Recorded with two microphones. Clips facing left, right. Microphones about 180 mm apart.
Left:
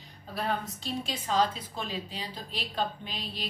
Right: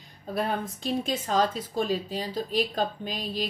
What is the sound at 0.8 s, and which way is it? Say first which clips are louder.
Speech: right 6 dB; 45° right (ahead or behind).